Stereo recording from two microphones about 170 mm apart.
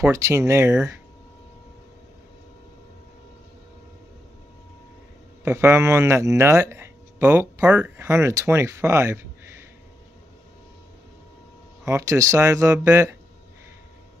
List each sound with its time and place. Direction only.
0.0 s speech: 15° right (ahead or behind)
5.4 s speech: 15° right (ahead or behind)
11.8 s speech: 20° right (ahead or behind)